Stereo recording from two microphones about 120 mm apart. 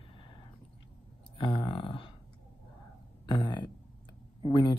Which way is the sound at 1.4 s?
45° left (ahead or behind).